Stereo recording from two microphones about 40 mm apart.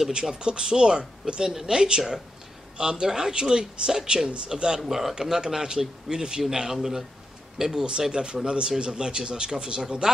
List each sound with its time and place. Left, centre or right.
0.1 s speech: right
8.1 s speech: right